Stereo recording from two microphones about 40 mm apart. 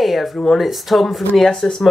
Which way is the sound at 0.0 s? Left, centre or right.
Centre.